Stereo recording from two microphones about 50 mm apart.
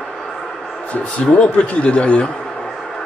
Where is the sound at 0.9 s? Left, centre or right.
Left.